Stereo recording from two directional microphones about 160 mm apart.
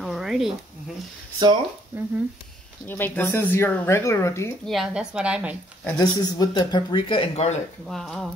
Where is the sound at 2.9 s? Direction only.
10° left (ahead or behind).